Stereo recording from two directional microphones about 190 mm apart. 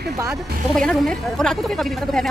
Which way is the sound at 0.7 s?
5° left (ahead or behind).